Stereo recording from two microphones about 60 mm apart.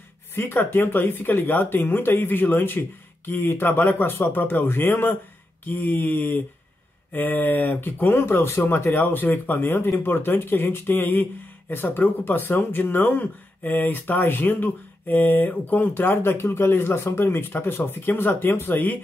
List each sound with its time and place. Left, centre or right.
0.4 s speech: left